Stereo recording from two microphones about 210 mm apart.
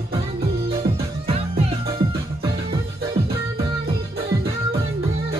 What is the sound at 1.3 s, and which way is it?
Music, 30° right (ahead or behind).